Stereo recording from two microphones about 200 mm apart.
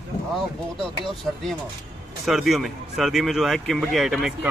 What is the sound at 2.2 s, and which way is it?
A man's voice, centre (ahead or behind).